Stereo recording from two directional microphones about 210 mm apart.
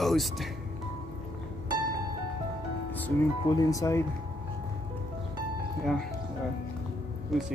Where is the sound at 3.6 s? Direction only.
15° left (ahead or behind).